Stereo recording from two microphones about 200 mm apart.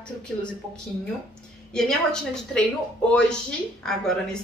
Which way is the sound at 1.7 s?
5° left (ahead or behind).